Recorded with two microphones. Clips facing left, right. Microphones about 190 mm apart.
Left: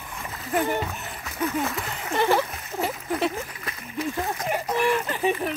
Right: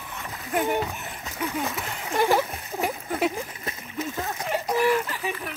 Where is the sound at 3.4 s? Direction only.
25° right (ahead or behind).